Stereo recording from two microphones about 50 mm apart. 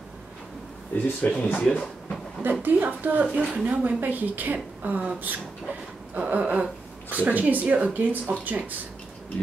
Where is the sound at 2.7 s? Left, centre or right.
Right.